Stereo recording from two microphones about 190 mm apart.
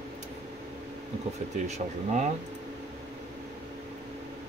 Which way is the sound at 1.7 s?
40° right (ahead or behind).